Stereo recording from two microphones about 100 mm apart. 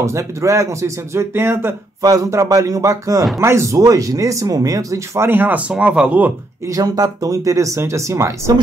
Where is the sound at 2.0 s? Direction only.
35° right (ahead or behind).